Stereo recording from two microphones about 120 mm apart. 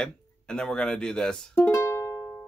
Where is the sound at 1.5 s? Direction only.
20° left (ahead or behind).